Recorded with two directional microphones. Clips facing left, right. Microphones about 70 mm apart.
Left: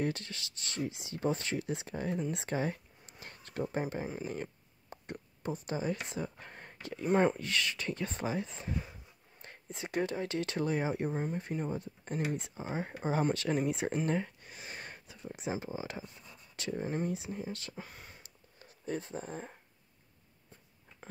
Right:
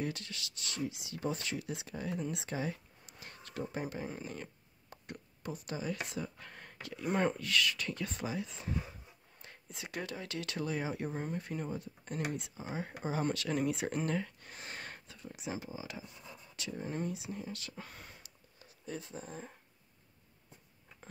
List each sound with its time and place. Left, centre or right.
0.0 s speech: left
2.3 s a sound: left
4.3 s speech: left
11.1 s speech: centre
11.3 s speech: left
14.4 s a sound: centre
15.2 s speech: left
16.8 s speech: left
17.1 s speech: left
17.7 s speech: centre
18.9 s speech: left